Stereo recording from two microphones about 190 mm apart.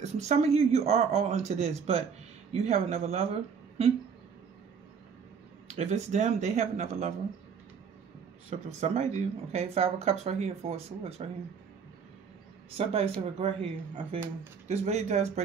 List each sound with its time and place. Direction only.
0.0 s speech: 35° right (ahead or behind)
5.7 s speech: 35° right (ahead or behind)
8.5 s speech: 35° right (ahead or behind)
12.7 s speech: 30° right (ahead or behind)
14.7 s speech: 35° right (ahead or behind)